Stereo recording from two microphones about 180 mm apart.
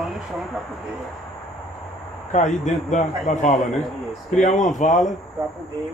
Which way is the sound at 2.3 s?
40° left (ahead or behind).